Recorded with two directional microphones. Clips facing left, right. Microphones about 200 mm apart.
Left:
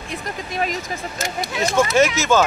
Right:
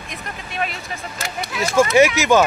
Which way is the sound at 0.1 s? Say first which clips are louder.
Left 5 dB; 35° left (ahead or behind).